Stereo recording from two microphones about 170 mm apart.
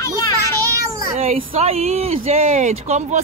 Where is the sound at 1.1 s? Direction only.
40° right (ahead or behind).